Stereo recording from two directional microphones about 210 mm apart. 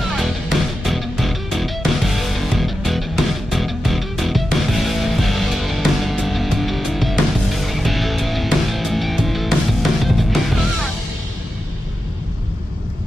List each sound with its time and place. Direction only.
0.1 s music: centre (ahead or behind)